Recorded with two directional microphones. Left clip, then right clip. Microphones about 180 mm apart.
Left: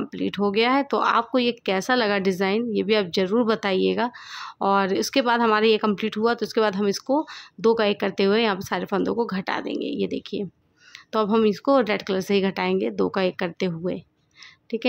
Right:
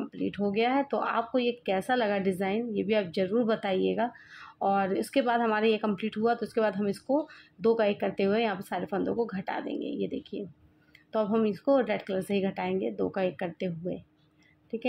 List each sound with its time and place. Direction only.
0.1 s speech: 35° left (ahead or behind)